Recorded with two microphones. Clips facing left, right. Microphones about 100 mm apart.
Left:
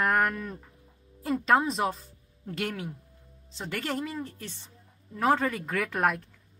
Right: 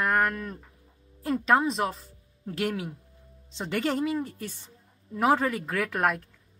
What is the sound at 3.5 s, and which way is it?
A woman's voice, 20° right (ahead or behind).